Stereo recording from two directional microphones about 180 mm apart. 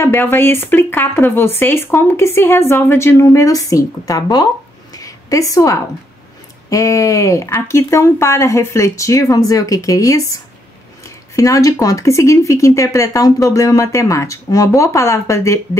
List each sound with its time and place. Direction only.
0.0 s speech: 10° left (ahead or behind)
4.9 s a sound: 20° left (ahead or behind)
6.7 s speech: 15° left (ahead or behind)